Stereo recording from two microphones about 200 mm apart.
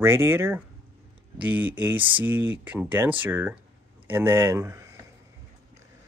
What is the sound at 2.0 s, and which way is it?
Speech, 25° right (ahead or behind).